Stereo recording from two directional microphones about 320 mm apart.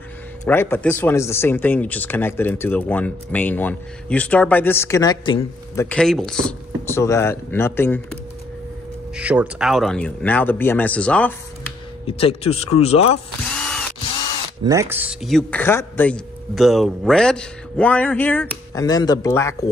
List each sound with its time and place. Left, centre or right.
0.5 s speech: centre
9.1 s speech: centre
12.1 s speech: centre
13.5 s drill: centre
14.6 s speech: centre